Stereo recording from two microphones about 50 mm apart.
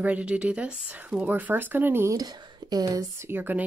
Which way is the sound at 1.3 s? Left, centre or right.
Right.